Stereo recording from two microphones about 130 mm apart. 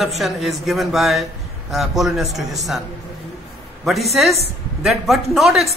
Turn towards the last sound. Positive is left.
turn(degrees=0)  # may be behind; listen again after turning